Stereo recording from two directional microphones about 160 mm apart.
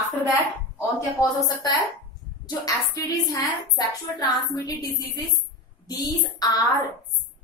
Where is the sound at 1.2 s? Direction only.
20° left (ahead or behind).